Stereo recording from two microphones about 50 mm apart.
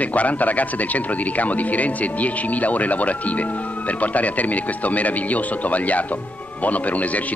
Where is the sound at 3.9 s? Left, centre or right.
Left.